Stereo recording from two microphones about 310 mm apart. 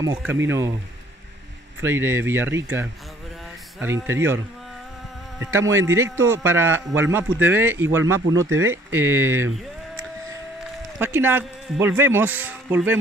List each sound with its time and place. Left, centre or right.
0.0 s a man's voice: centre
1.8 s a man's voice: centre
5.4 s a man's voice: centre
8.0 s speech: right
8.9 s a man's voice: centre
11.0 s a man's voice: centre